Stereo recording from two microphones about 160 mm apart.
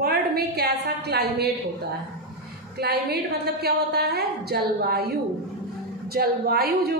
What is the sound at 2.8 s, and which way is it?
A woman's voice, 90° right.